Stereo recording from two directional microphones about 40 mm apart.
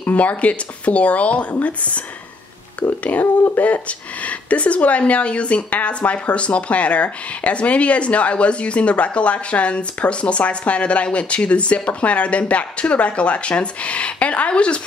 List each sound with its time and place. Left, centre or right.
0.0 s speech: left
3.0 s speech: left